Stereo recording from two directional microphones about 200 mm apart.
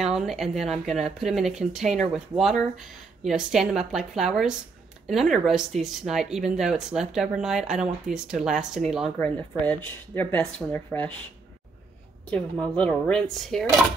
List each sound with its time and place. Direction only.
0.0 s speech: centre (ahead or behind)
12.3 s speech: 5° left (ahead or behind)